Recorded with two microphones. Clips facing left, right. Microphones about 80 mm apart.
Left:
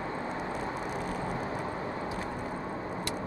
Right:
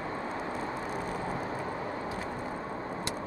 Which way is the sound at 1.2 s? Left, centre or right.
Centre.